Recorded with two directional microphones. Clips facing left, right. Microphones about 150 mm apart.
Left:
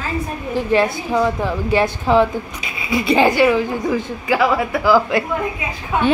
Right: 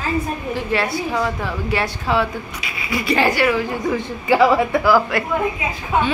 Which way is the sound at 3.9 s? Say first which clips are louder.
Right 4 dB; 5° left (ahead or behind).